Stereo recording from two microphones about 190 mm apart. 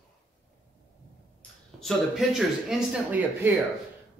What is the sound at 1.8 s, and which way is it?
Speech, centre (ahead or behind).